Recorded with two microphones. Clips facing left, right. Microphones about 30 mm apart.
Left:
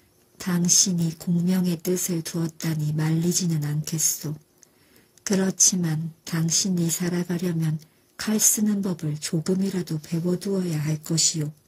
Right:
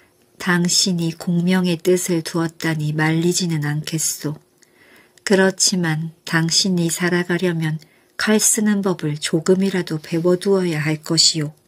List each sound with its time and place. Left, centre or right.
0.4 s a woman's voice: right